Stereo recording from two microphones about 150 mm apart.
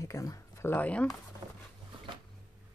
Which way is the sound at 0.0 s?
20° left (ahead or behind).